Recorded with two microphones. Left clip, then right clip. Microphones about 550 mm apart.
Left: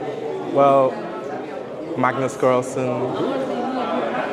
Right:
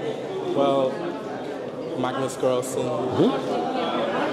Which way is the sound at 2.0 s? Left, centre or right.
Left.